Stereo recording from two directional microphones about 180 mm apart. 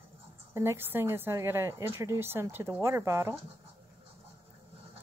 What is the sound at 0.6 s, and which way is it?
A woman's voice, 15° right (ahead or behind).